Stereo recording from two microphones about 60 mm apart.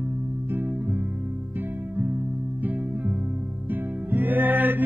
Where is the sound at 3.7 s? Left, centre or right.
Right.